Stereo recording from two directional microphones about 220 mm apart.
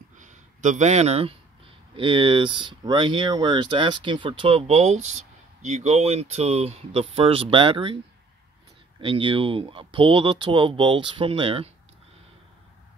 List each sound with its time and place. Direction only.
0.2 s a sound: 35° right (ahead or behind)
2.0 s speech: 25° right (ahead or behind)
9.0 s speech: 25° right (ahead or behind)